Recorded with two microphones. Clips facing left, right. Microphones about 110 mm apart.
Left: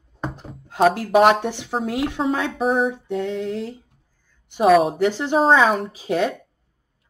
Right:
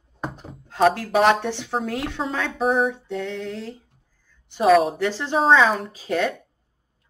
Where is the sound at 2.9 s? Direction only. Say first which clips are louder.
Left 4 dB; 10° left (ahead or behind).